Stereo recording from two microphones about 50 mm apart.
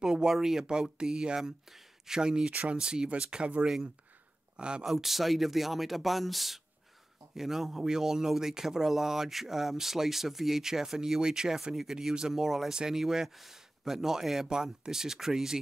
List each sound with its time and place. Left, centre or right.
0.0 s speech: centre
4.8 s speech: centre